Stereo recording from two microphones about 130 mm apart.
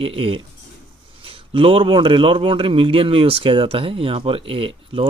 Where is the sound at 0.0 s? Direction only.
45° right (ahead or behind).